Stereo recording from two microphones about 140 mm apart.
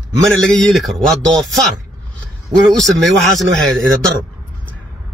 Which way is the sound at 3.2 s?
Centre (ahead or behind).